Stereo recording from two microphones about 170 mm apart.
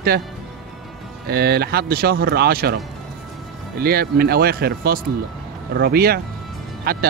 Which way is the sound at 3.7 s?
65° right (ahead or behind).